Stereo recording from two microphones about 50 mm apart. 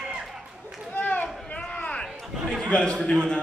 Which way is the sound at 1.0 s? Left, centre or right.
Left.